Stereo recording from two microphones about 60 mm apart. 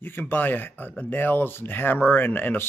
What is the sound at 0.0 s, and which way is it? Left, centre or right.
Speech, left.